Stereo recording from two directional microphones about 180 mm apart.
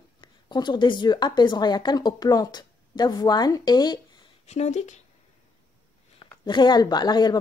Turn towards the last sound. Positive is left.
turn(degrees=25)  # may be behind; listen again after turning